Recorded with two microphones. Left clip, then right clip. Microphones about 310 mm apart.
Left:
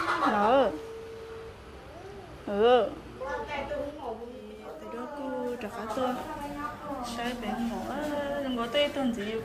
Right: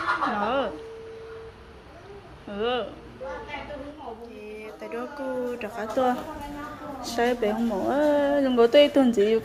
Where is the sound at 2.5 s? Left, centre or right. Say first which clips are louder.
Left 5 dB; centre.